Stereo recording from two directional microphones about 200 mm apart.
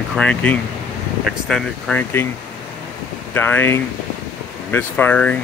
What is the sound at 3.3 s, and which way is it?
Speech, 10° left (ahead or behind).